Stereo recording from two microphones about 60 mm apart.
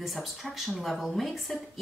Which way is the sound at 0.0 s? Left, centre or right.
Centre.